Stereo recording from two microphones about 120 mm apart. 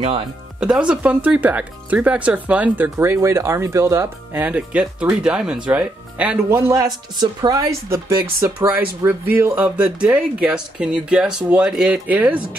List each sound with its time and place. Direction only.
0.6 s speech: 10° right (ahead or behind); by 4.4 s 25° right (ahead or behind)
4.4 s speech: 10° right (ahead or behind)
6.5 s speech: 25° right (ahead or behind)